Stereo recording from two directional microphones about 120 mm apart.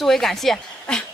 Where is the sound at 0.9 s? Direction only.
5° left (ahead or behind).